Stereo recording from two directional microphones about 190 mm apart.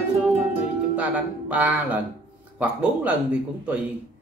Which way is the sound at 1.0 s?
10° right (ahead or behind).